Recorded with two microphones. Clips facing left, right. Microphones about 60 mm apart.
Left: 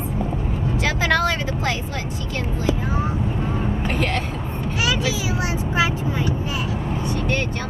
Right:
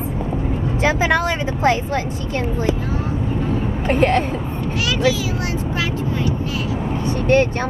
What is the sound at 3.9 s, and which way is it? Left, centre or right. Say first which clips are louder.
Speech: right 10 dB; right.